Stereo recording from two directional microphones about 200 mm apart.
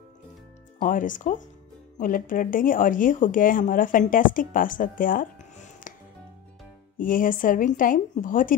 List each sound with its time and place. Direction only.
0.7 s a woman's voice: 40° left (ahead or behind)
7.0 s a woman's voice: 45° left (ahead or behind)